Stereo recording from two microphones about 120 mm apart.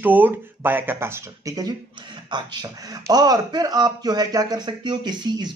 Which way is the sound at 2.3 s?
40° right (ahead or behind).